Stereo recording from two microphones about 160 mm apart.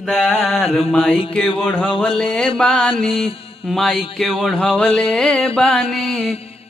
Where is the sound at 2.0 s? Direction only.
5° left (ahead or behind).